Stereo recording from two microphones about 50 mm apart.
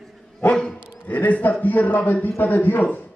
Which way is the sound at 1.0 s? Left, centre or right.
Left.